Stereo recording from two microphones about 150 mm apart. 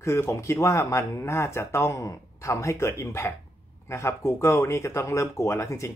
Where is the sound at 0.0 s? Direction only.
20° left (ahead or behind).